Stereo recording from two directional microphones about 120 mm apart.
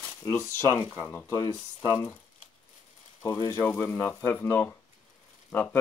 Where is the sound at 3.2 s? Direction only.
25° left (ahead or behind).